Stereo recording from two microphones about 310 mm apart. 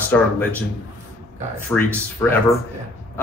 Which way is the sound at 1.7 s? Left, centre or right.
Centre.